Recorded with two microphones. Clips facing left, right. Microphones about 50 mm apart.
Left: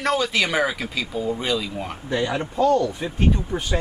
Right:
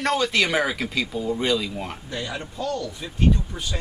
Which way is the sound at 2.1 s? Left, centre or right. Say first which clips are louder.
Left 12 dB; left.